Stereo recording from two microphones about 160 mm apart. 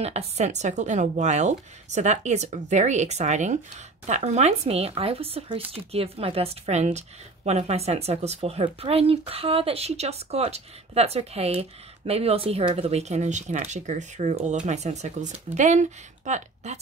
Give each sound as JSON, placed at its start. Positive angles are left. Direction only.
{"t": 0.0, "sound": "speech", "side_deg": -40}